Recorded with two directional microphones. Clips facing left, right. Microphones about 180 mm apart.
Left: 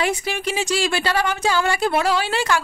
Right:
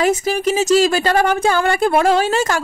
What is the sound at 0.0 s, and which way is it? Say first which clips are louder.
Speech: right 7 dB; 40° right (ahead or behind).